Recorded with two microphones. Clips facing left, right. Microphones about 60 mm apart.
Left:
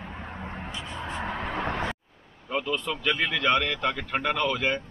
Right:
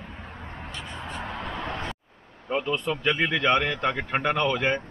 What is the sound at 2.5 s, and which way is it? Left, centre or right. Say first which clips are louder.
Speech: right 2 dB; centre.